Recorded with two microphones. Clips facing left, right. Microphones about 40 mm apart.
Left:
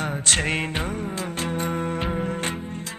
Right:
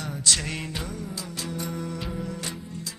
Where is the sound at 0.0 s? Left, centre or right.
Left.